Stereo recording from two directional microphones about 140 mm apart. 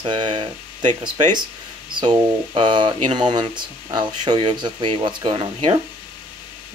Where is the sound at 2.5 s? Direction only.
35° right (ahead or behind).